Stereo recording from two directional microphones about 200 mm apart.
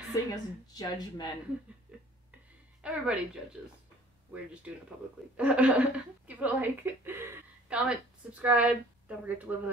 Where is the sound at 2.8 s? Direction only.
5° right (ahead or behind).